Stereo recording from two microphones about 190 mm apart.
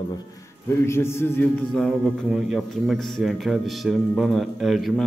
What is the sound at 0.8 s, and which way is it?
A man's voice, 15° left (ahead or behind).